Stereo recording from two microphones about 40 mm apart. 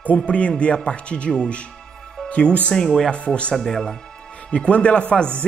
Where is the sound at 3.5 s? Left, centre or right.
Centre.